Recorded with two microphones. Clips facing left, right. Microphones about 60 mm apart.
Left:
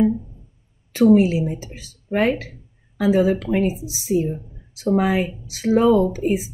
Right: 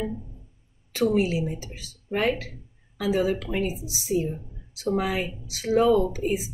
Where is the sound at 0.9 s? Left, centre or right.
Left.